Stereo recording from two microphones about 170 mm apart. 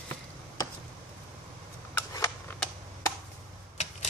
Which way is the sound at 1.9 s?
15° left (ahead or behind).